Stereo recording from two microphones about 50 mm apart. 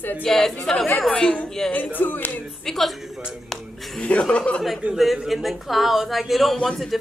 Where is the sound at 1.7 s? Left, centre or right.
Left.